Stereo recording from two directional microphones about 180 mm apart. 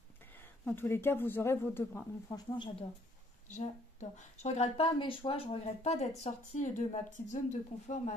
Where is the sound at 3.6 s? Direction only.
40° left (ahead or behind).